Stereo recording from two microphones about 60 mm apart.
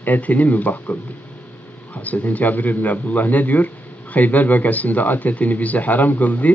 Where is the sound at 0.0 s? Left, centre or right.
Left.